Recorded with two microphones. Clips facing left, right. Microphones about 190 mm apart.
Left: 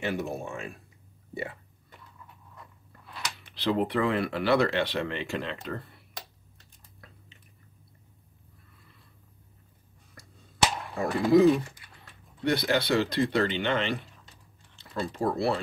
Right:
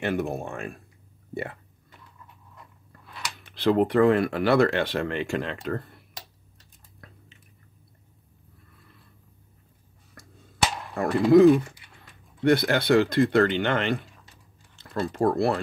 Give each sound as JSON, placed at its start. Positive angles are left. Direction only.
{"t": 0.0, "sound": "speech", "side_deg": -55}
{"t": 3.5, "sound": "speech", "side_deg": -50}
{"t": 11.3, "sound": "speech", "side_deg": -55}